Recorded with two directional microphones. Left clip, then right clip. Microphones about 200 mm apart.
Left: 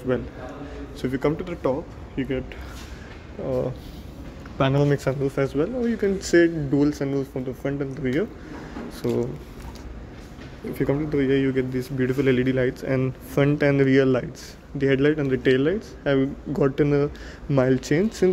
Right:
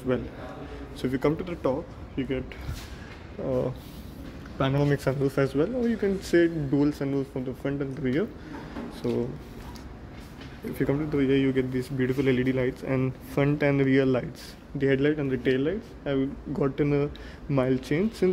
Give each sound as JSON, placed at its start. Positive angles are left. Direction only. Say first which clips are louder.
{"t": 1.0, "sound": "speech", "louder": "left 2 dB", "side_deg": 0}
{"t": 3.4, "sound": "speech", "louder": "left 2 dB", "side_deg": -5}
{"t": 4.6, "sound": "speech", "louder": "left 4 dB", "side_deg": 10}
{"t": 5.2, "sound": "speech", "louder": "left 1 dB", "side_deg": -10}
{"t": 5.9, "sound": "speech", "louder": "left 4 dB", "side_deg": 5}
{"t": 10.8, "sound": "speech", "louder": "left 3 dB", "side_deg": 0}